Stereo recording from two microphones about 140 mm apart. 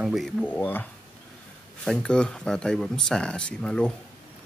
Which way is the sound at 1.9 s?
5° left (ahead or behind).